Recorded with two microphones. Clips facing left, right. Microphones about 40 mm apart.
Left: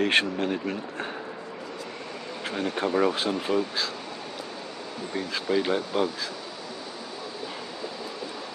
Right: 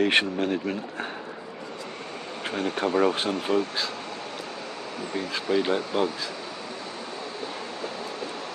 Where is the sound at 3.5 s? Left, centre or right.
Left.